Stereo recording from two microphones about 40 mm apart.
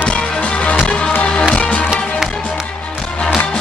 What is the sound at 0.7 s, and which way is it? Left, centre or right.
Music, left.